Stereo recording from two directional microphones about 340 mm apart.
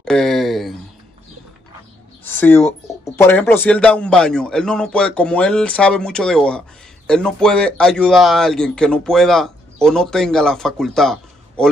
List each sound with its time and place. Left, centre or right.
0.0 s speech: centre
2.2 s speech: centre